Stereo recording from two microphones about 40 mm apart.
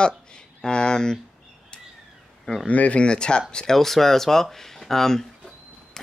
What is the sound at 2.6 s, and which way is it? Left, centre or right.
Speech, left.